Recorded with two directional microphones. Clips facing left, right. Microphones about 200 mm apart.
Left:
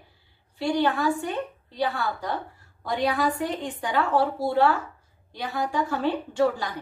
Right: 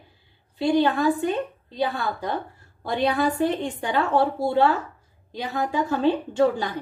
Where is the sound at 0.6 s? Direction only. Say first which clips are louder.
Right 4 dB; 20° right (ahead or behind).